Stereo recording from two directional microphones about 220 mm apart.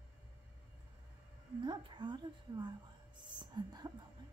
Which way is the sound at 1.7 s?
20° right (ahead or behind).